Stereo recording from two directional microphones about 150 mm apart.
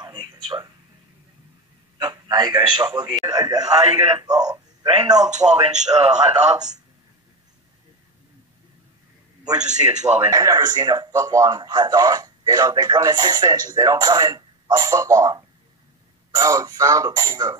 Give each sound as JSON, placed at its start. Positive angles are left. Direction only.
{"t": 0.0, "sound": "a sound", "side_deg": -30}
{"t": 2.0, "sound": "speech", "side_deg": -30}
{"t": 5.3, "sound": "a man's voice", "side_deg": -50}
{"t": 9.4, "sound": "a man's voice", "side_deg": -5}
{"t": 9.7, "sound": "a man's voice", "side_deg": -50}
{"t": 10.3, "sound": "speech", "side_deg": -25}